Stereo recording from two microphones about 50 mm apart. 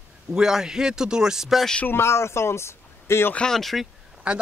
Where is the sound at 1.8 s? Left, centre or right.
Left.